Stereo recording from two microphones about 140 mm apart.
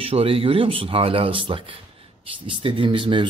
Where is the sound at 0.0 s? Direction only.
40° right (ahead or behind).